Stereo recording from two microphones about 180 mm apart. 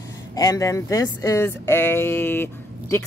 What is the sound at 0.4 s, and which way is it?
Speech, 20° left (ahead or behind).